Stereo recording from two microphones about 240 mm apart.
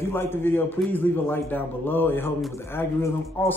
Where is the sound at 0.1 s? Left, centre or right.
Centre.